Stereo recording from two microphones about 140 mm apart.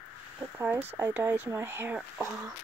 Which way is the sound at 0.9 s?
15° right (ahead or behind).